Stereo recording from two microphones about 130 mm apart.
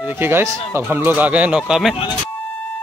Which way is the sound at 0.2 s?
20° right (ahead or behind).